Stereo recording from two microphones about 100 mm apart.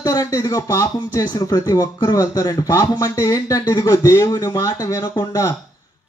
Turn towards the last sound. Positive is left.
turn(degrees=30)  # may be behind; listen again after turning